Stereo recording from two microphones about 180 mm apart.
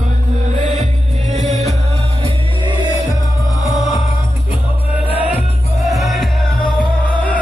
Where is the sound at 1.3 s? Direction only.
40° right (ahead or behind).